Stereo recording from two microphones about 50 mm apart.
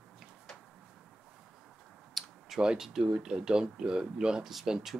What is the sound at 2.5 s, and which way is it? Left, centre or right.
Speech, centre.